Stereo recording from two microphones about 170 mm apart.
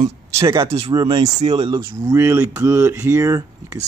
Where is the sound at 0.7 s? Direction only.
35° right (ahead or behind).